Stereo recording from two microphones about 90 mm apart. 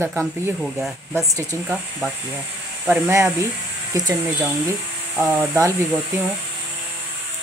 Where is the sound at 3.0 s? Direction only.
30° right (ahead or behind).